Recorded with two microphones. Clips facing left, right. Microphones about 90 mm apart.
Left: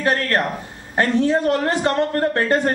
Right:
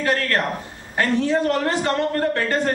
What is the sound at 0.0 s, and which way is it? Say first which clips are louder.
A man's voice: left 2 dB; 20° left (ahead or behind).